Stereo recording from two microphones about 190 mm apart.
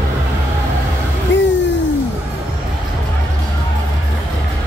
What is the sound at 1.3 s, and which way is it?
Music, 75° left (ahead or behind).